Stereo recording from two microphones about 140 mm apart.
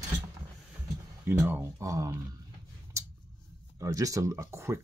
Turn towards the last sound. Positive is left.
turn(degrees=-20)  # may be behind; listen again after turning